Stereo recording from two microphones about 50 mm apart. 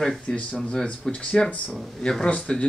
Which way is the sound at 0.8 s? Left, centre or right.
Centre.